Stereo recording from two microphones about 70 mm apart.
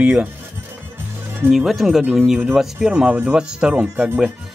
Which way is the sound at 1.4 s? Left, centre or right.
Centre.